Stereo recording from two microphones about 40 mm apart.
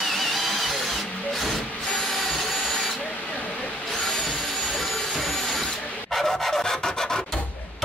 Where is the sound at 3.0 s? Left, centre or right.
Left.